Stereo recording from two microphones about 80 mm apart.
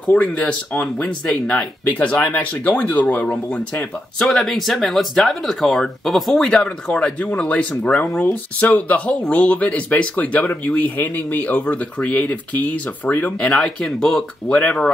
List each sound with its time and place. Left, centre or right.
0.0 s speech: centre
4.3 s speech: centre
13.5 s speech: centre
14.5 s speech: centre